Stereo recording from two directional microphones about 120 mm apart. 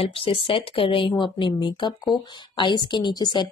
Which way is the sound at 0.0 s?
50° left (ahead or behind).